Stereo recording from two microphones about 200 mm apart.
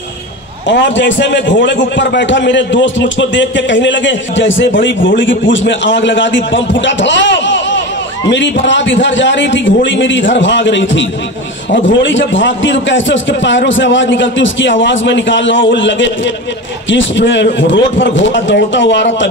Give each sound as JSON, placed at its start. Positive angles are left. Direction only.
{"t": 0.7, "sound": "a man's voice", "side_deg": 65}